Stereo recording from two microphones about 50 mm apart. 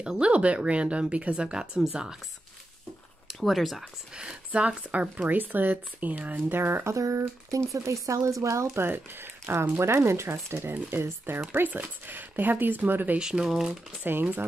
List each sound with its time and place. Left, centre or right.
0.2 s speech: right
3.4 s speech: centre
4.5 s speech: right
6.5 s speech: right
6.9 s speech: right
8.7 s speech: right
11.5 s speech: right
13.2 s speech: centre
14.0 s speech: right